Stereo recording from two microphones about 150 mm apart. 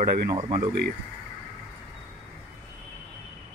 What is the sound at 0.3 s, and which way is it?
Speech, 35° right (ahead or behind).